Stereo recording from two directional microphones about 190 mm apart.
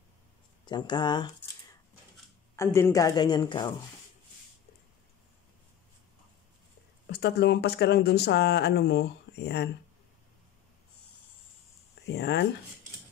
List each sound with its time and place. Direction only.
0.7 s speech: 25° left (ahead or behind)
7.1 s speech: 55° left (ahead or behind)
12.1 s speech: 60° left (ahead or behind)